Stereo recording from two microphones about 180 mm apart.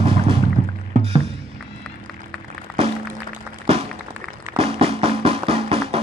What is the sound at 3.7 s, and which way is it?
Music, 35° right (ahead or behind).